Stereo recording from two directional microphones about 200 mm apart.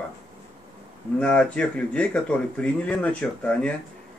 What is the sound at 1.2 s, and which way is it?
Speech, 5° left (ahead or behind).